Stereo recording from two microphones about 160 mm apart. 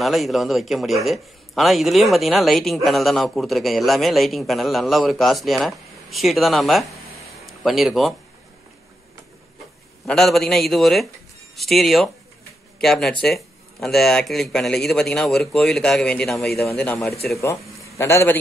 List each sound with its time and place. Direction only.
0.0 s a man's voice: centre (ahead or behind)
10.0 s a man's voice: 5° left (ahead or behind)